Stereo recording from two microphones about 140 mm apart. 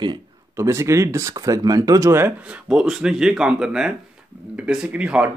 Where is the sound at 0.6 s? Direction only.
20° right (ahead or behind).